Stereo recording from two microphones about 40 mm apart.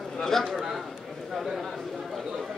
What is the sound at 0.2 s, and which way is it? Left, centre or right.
Speech, centre.